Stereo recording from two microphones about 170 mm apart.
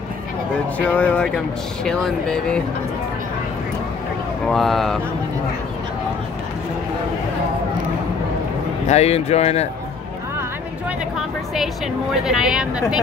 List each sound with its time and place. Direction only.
0.7 s a woman's voice: 10° left (ahead or behind)
4.5 s a woman's voice: centre (ahead or behind)
8.8 s speech: 40° left (ahead or behind)
11.1 s a woman's voice: centre (ahead or behind)